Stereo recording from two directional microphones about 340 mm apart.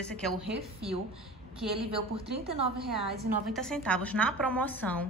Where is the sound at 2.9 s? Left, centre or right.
Centre.